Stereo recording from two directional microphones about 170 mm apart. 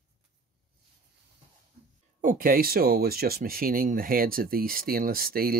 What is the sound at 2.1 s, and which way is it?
Speech, 55° right (ahead or behind).